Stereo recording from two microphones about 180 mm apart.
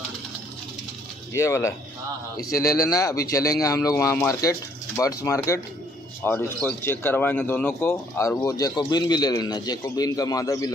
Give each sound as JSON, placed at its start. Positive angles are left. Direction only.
{"t": 1.3, "sound": "speech", "side_deg": 15}